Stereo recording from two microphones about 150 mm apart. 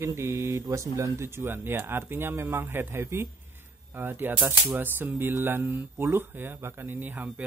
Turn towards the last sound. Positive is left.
turn(degrees=-10)  # may be behind; listen again after turning